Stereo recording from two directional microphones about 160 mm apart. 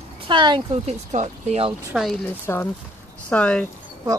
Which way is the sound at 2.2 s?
15° left (ahead or behind).